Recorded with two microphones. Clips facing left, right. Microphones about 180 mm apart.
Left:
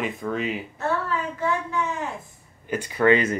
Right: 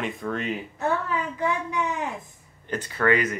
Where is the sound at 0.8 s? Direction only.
15° right (ahead or behind).